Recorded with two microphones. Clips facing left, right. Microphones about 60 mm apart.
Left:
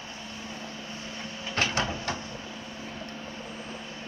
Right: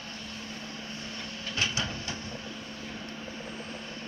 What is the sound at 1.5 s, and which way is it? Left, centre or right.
Printer, left.